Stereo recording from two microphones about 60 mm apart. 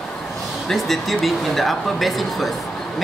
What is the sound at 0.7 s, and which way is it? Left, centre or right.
Speech, centre.